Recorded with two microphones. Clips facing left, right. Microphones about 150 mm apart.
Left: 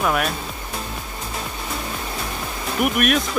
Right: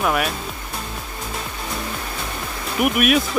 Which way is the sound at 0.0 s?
Centre (ahead or behind).